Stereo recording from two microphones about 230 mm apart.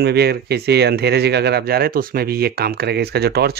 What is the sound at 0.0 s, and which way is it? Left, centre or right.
Speech, right.